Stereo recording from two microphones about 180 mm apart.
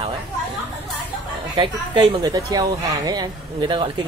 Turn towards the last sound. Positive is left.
turn(degrees=-25)  # may be behind; listen again after turning